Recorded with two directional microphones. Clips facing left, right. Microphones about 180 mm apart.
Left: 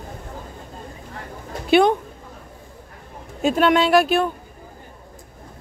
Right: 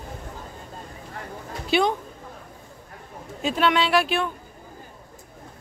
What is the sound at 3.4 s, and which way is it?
Speech, 45° left (ahead or behind).